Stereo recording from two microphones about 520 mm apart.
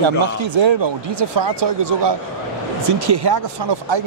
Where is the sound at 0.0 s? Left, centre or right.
Right.